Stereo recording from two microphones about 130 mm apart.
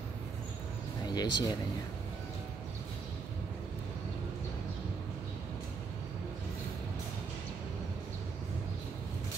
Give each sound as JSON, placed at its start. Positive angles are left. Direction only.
{"t": 1.0, "sound": "speech", "side_deg": 35}